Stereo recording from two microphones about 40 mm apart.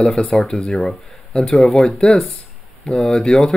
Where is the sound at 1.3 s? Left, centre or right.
Centre.